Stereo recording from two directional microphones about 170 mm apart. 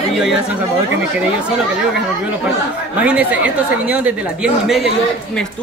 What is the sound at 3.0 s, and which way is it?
A woman's voice, 10° right (ahead or behind).